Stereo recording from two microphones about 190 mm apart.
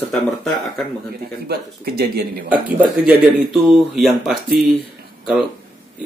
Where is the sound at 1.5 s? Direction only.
55° right (ahead or behind).